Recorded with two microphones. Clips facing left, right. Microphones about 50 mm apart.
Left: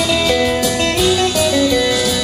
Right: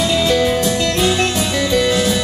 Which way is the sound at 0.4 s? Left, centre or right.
Left.